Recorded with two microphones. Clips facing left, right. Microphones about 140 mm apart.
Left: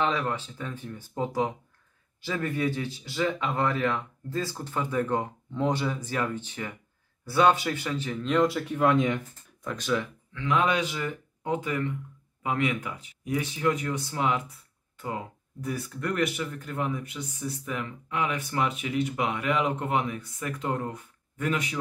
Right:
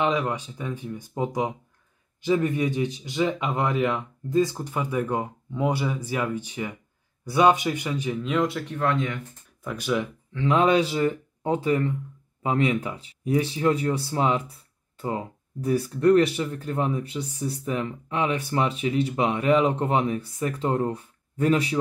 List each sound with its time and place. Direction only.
0.0 s speech: 15° right (ahead or behind); by 9.2 s 15° left (ahead or behind)
9.6 s speech: 5° right (ahead or behind)
10.3 s speech: 30° right (ahead or behind)